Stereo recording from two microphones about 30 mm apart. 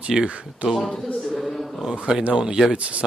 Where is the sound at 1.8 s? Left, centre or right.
Right.